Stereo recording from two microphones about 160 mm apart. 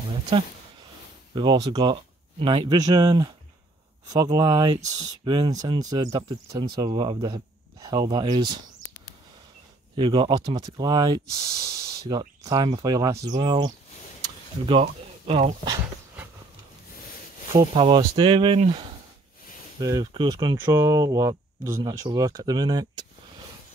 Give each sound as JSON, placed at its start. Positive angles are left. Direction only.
{"t": 1.3, "sound": "speech", "side_deg": -30}
{"t": 9.9, "sound": "speech", "side_deg": -30}
{"t": 17.6, "sound": "speech", "side_deg": -30}
{"t": 19.8, "sound": "speech", "side_deg": -25}